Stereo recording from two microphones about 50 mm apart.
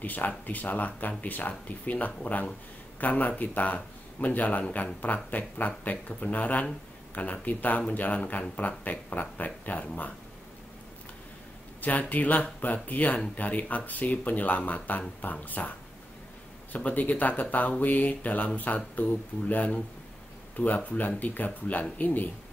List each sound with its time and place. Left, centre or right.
0.0 s speech: left
11.8 s speech: left
16.7 s speech: left